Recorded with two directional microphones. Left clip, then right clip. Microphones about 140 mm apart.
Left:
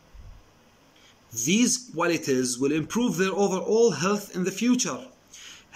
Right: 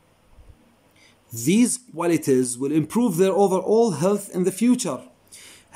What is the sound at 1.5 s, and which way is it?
Speech, 40° right (ahead or behind).